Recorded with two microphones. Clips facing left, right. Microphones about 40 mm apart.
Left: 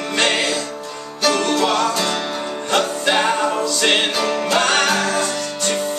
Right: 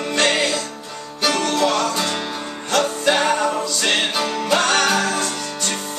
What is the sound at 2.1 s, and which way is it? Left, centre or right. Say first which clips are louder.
Music: left 2 dB; centre.